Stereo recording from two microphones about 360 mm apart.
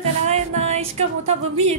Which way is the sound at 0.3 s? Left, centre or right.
Centre.